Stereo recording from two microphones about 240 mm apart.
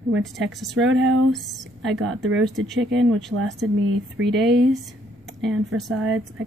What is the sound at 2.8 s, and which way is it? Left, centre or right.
Speech, right.